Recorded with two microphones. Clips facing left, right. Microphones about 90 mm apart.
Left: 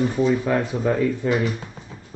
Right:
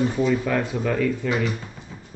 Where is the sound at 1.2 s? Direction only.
35° left (ahead or behind).